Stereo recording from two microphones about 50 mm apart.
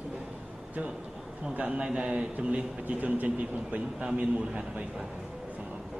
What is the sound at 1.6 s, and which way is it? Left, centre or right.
A man's voice, right.